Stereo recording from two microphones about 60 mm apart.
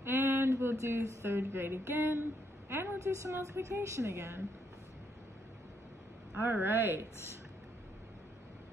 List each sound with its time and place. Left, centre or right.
0.0 s a woman's voice: right
3.2 s a woman's voice: right
6.4 s speech: right